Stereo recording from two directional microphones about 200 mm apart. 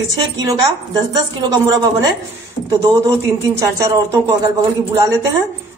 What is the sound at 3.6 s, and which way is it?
Speech, 15° right (ahead or behind).